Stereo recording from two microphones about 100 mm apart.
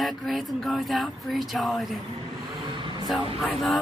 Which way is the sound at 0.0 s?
Centre (ahead or behind).